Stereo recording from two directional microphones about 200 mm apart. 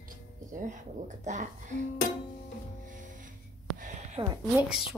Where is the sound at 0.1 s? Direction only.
40° right (ahead or behind).